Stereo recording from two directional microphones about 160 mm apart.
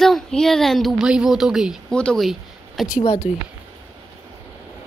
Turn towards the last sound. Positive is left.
turn(degrees=40)  # may be behind; listen again after turning